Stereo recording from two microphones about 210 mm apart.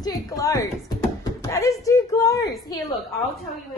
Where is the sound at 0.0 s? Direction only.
15° left (ahead or behind).